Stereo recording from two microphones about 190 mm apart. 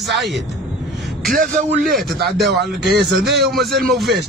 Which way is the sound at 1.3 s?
45° right (ahead or behind).